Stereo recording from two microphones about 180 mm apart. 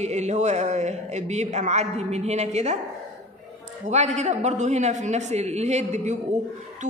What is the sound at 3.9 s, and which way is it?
A man's voice, 40° right (ahead or behind).